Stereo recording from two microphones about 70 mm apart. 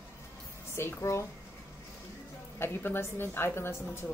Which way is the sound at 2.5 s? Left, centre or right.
Left.